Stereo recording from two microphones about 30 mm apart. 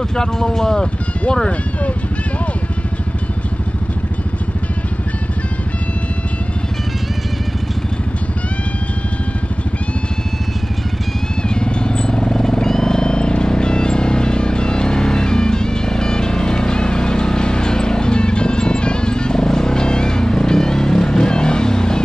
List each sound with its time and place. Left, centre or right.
0.1 s speech: left
11.4 s vehicle: left